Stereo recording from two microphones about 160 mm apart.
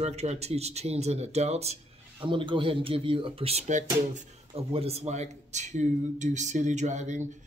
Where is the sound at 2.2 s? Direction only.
30° right (ahead or behind).